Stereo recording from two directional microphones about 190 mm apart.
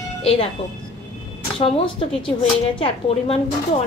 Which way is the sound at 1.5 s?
30° left (ahead or behind).